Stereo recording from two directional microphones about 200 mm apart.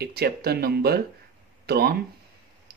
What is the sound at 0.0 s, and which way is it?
Speech, 50° right (ahead or behind).